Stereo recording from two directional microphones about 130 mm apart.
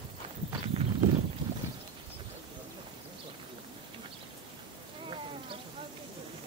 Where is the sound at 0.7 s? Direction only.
50° right (ahead or behind).